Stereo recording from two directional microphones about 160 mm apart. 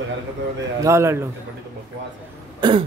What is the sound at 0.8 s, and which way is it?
Speech, 15° right (ahead or behind).